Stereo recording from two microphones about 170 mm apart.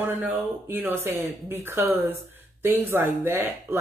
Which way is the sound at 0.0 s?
10° right (ahead or behind).